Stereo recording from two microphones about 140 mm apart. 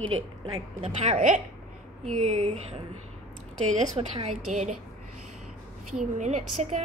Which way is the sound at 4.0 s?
50° right (ahead or behind).